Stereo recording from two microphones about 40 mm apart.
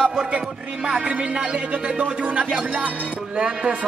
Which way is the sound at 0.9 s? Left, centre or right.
Centre.